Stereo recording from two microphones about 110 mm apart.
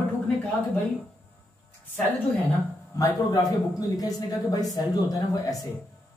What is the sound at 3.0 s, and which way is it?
Speech, 35° left (ahead or behind).